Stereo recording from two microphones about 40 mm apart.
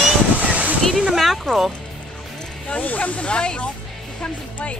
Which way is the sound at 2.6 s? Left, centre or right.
Left.